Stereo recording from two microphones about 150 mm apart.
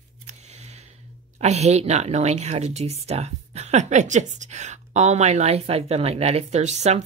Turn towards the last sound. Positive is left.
turn(degrees=-50)  # may be behind; listen again after turning